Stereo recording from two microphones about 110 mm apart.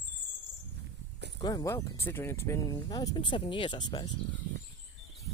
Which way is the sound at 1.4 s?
40° left (ahead or behind).